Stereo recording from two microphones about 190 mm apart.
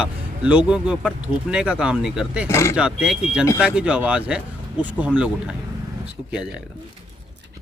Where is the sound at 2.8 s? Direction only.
5° right (ahead or behind).